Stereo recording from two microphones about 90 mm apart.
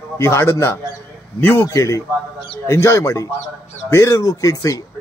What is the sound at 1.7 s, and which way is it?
Speech, 35° left (ahead or behind).